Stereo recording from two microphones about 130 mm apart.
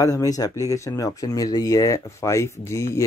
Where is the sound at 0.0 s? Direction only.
25° left (ahead or behind).